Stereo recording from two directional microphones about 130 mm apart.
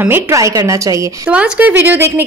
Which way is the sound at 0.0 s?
20° right (ahead or behind).